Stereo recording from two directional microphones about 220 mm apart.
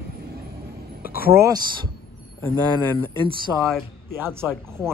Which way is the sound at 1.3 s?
10° right (ahead or behind).